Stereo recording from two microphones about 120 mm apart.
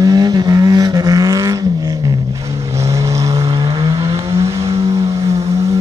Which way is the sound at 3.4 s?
45° right (ahead or behind).